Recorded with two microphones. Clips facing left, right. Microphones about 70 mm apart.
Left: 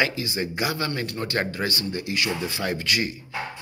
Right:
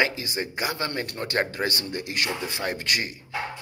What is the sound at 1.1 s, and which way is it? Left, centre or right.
Speech, right.